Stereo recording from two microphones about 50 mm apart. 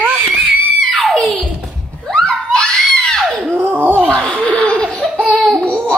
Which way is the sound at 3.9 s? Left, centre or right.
Centre.